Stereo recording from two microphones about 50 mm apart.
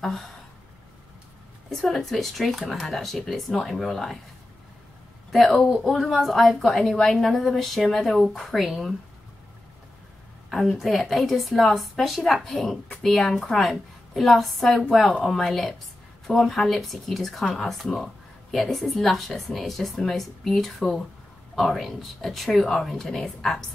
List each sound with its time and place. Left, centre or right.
1.7 s speech: centre
5.3 s speech: centre
10.7 s speech: centre